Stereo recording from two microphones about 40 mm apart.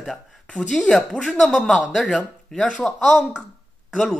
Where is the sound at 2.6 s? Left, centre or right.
Left.